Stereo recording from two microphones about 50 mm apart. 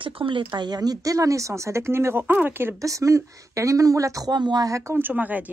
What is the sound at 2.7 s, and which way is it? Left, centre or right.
Speech, right.